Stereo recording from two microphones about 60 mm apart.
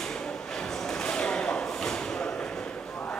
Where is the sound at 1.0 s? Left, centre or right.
Centre.